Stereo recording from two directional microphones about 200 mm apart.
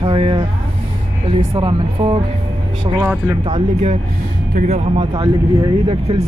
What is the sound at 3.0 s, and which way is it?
Speech, 10° right (ahead or behind).